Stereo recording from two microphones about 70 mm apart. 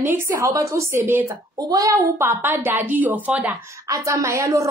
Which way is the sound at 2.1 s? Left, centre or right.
Right.